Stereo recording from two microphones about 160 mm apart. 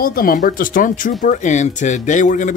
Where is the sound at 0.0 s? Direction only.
65° left (ahead or behind).